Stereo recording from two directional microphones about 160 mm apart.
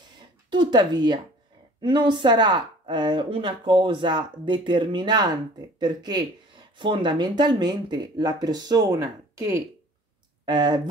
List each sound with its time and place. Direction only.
0.5 s speech: 30° right (ahead or behind)